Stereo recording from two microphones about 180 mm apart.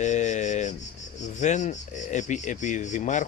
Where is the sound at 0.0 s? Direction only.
40° left (ahead or behind).